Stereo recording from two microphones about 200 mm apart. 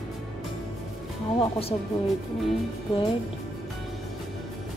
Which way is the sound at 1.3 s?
30° left (ahead or behind).